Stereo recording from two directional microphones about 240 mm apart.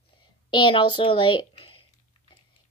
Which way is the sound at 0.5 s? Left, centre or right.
Centre.